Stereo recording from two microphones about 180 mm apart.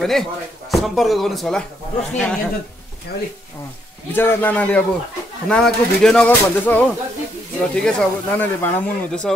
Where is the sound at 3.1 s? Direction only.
65° left (ahead or behind).